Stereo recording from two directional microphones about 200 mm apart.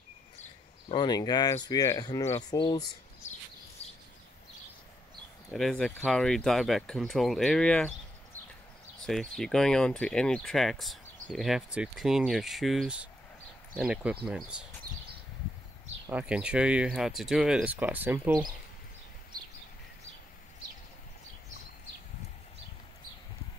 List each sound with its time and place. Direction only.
0.4 s speech: 25° left (ahead or behind)
3.8 s a sound: 10° left (ahead or behind)
5.5 s speech: centre (ahead or behind)
9.0 s speech: centre (ahead or behind)
16.1 s speech: 5° right (ahead or behind)